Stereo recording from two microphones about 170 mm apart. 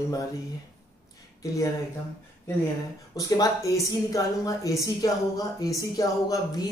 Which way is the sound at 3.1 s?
20° left (ahead or behind).